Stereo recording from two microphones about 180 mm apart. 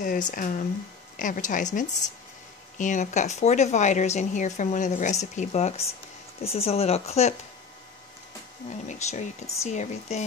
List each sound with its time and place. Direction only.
0.0 s speech: 50° left (ahead or behind)
8.6 s speech: 40° left (ahead or behind)